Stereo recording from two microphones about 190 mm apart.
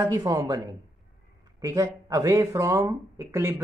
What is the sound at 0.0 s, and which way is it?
Speech, 20° right (ahead or behind).